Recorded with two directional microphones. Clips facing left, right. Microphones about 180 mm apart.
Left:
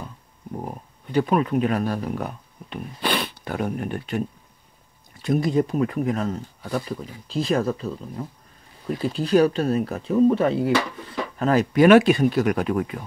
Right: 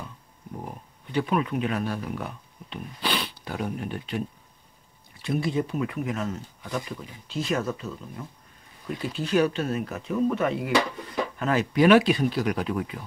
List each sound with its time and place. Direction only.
0.7 s speech: 40° left (ahead or behind)
5.2 s speech: 40° left (ahead or behind)